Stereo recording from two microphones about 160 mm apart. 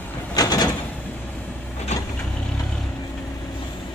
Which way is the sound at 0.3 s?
25° left (ahead or behind).